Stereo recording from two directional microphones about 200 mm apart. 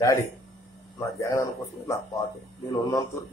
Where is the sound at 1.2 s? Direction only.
15° left (ahead or behind).